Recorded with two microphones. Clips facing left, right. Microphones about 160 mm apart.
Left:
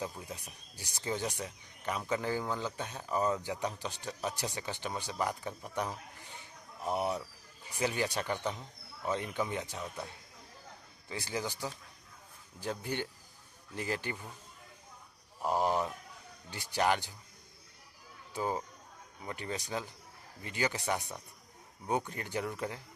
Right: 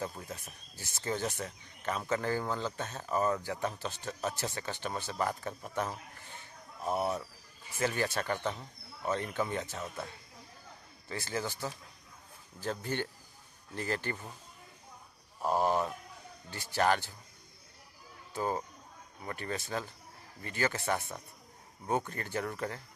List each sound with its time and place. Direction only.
0.2 s speech: 15° left (ahead or behind)
5.8 s a sound: 15° left (ahead or behind)
6.9 s speech: 15° left (ahead or behind)
11.1 s speech: 15° left (ahead or behind)
15.5 s speech: 15° right (ahead or behind)
16.4 s speech: 15° left (ahead or behind)
18.3 s speech: 15° left (ahead or behind)